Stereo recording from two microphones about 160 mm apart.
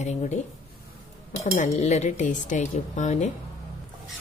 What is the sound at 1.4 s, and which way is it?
Speech, 45° left (ahead or behind).